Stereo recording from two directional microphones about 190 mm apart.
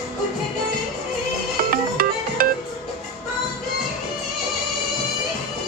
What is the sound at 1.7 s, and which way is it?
Music, 50° right (ahead or behind).